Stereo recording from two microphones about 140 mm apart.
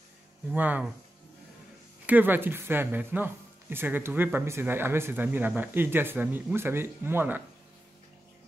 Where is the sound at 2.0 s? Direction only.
15° right (ahead or behind).